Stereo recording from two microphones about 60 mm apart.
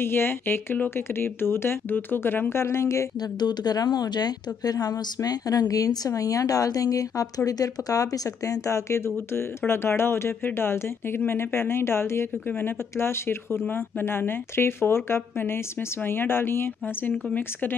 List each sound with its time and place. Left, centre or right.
0.0 s speech: left
3.6 s a woman's voice: left
12.4 s speech: left
12.9 s speech: left